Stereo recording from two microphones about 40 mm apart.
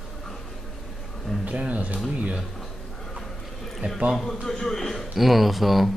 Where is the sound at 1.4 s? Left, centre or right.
Right.